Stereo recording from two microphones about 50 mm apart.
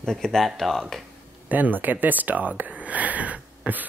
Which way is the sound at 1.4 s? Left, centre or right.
Right.